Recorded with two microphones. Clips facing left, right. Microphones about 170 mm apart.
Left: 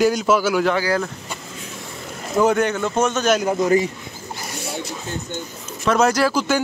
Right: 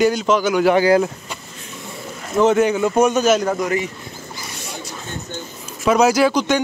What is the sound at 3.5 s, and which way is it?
Speech, 30° left (ahead or behind).